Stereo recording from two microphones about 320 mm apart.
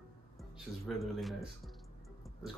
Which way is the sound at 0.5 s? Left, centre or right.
Centre.